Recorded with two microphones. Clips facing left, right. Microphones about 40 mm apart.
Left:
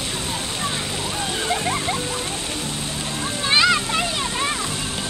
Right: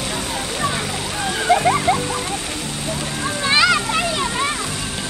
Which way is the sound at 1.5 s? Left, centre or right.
Right.